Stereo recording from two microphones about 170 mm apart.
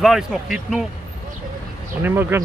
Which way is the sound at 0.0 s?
5° right (ahead or behind).